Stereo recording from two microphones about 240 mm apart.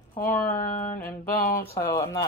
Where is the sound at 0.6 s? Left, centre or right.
Left.